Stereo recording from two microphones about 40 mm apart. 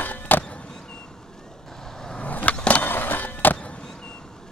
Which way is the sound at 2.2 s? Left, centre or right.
Left.